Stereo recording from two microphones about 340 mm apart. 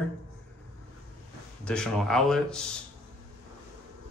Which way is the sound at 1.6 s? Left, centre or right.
Centre.